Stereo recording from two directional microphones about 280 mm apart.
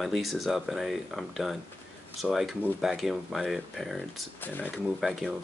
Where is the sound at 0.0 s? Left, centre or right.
Centre.